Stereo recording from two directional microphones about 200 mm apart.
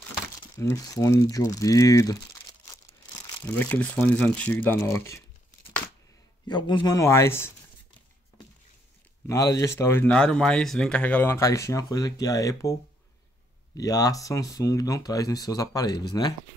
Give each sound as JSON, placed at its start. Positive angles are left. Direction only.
{"t": 0.6, "sound": "speech", "side_deg": 15}
{"t": 3.3, "sound": "speech", "side_deg": 10}
{"t": 6.4, "sound": "speech", "side_deg": 20}
{"t": 9.3, "sound": "speech", "side_deg": 15}
{"t": 13.7, "sound": "speech", "side_deg": 20}